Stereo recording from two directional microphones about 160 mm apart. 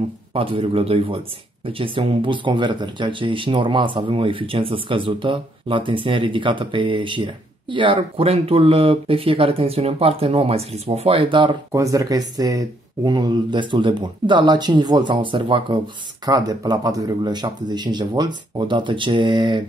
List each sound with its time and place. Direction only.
0.3 s speech: 35° right (ahead or behind)
11.7 s speech: 20° right (ahead or behind)